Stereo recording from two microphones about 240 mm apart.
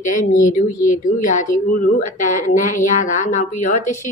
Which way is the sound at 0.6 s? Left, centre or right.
Left.